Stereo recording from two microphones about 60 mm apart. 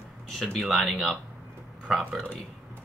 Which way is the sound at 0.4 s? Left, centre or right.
Centre.